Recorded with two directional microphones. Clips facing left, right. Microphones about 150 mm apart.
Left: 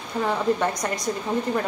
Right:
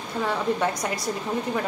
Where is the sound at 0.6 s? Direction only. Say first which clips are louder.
Left 1 dB; 5° right (ahead or behind).